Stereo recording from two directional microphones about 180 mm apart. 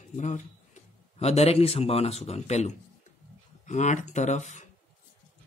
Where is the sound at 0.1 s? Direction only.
40° left (ahead or behind).